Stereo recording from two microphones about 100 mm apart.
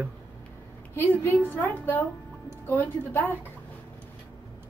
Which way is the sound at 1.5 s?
20° left (ahead or behind).